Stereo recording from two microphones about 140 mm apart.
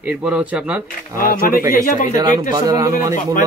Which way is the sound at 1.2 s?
90° left.